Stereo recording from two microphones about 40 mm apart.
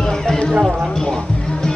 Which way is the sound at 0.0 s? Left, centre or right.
Centre.